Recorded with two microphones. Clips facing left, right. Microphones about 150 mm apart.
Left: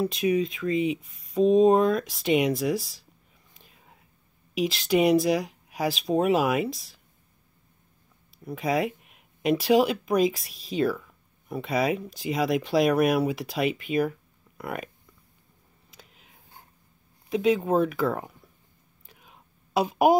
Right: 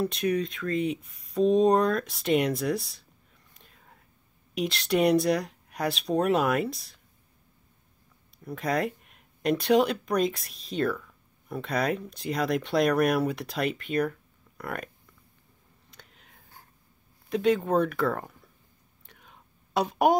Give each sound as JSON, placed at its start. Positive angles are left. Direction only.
{"t": 0.0, "sound": "speech", "side_deg": 0}
{"t": 3.5, "sound": "whispering", "side_deg": 5}
{"t": 4.6, "sound": "speech", "side_deg": 0}
{"t": 8.5, "sound": "speech", "side_deg": 0}
{"t": 15.9, "sound": "a sound", "side_deg": 5}
{"t": 17.3, "sound": "speech", "side_deg": 0}
{"t": 19.0, "sound": "whispering", "side_deg": 5}